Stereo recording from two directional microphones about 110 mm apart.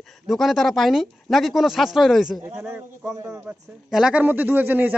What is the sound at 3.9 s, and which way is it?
A man's voice, 5° right (ahead or behind).